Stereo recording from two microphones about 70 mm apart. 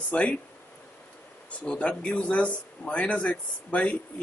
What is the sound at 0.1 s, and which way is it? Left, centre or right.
Speech, centre.